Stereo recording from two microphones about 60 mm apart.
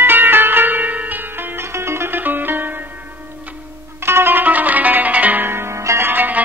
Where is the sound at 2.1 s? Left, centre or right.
Right.